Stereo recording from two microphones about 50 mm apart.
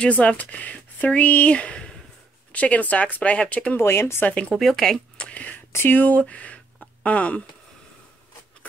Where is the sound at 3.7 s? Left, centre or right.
Left.